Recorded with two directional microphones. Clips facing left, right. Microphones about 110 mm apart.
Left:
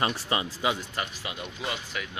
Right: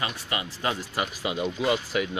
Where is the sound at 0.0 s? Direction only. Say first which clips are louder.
Left 3 dB; 30° left (ahead or behind).